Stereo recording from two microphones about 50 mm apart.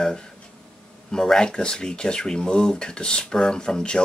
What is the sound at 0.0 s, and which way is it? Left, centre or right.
Speech, centre.